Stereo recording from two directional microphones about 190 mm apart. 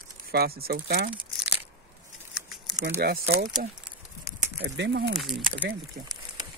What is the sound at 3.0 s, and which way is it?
Speech, 55° right (ahead or behind).